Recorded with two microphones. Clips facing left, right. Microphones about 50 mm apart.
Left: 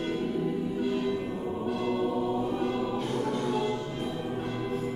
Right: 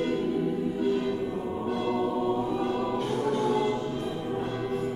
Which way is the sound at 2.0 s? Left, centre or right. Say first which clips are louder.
Right 2 dB; centre.